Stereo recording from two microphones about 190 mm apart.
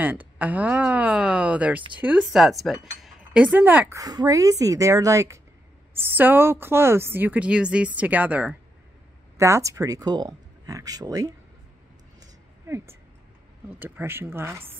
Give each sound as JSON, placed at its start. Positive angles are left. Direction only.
{"t": 0.0, "sound": "a woman's voice", "side_deg": -10}
{"t": 2.0, "sound": "chink", "side_deg": -5}
{"t": 4.0, "sound": "a woman's voice", "side_deg": -20}
{"t": 12.2, "sound": "a sound", "side_deg": -15}
{"t": 13.7, "sound": "a woman's voice", "side_deg": -10}